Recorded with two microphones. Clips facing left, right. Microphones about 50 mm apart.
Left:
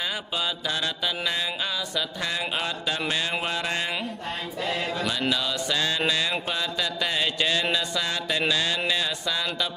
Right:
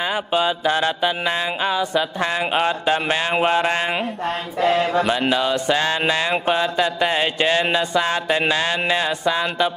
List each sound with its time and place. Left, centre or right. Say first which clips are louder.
0.0 s mantra: right 9 dB; right
4.6 s mantra: right 12 dB; right
5.0 s mantra: right 7 dB; right